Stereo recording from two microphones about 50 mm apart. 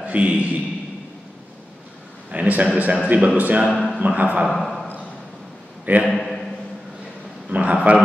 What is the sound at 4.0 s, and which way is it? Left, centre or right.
Speech, right.